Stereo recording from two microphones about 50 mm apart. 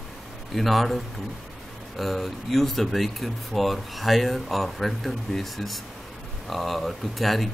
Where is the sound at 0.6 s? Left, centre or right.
Centre.